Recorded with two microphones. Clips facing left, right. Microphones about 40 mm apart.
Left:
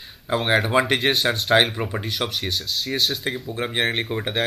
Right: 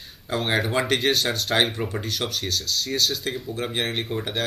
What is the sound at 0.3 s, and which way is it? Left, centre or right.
Speech, centre.